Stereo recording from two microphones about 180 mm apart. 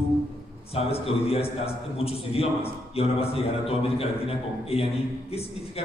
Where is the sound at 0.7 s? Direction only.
35° left (ahead or behind).